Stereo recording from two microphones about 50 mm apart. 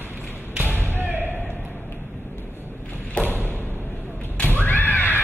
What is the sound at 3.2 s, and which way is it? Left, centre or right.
Thump, right.